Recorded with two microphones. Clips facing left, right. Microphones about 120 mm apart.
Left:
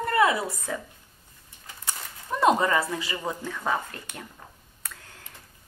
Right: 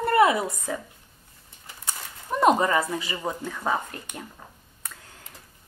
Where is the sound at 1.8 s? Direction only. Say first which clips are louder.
Right 1 dB; 15° right (ahead or behind).